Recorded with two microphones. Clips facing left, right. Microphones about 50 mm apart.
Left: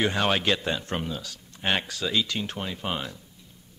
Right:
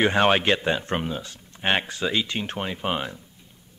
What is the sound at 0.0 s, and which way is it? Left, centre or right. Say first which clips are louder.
A man's voice: right 5 dB; right.